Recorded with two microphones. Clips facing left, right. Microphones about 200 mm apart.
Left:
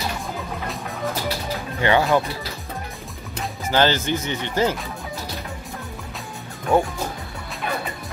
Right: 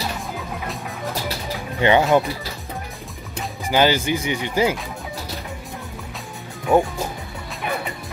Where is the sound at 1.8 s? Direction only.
20° right (ahead or behind).